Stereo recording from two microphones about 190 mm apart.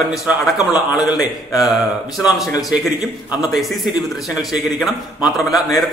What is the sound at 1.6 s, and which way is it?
A man's voice, centre (ahead or behind).